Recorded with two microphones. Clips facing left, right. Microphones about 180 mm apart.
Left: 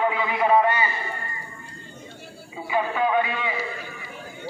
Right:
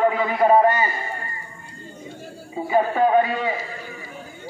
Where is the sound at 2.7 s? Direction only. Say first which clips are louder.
Right 5 dB; 45° right (ahead or behind).